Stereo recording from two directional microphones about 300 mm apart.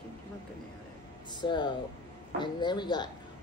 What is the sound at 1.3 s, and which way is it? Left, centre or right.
Speech, centre.